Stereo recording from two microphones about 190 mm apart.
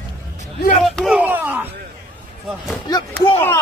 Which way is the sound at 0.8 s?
Centre (ahead or behind).